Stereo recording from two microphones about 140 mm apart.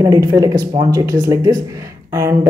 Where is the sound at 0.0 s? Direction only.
25° right (ahead or behind).